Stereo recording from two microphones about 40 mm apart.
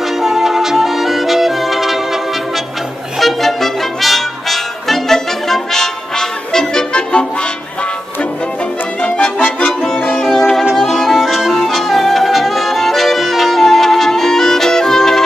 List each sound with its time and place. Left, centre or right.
0.2 s music: centre
3.2 s brass instrument: centre; by 7.2 s left
9.0 s music: left
9.6 s music: centre
10.3 s brass instrument: centre
10.9 s music: centre